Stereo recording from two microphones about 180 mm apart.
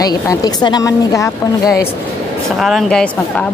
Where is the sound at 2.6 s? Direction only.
Centre (ahead or behind).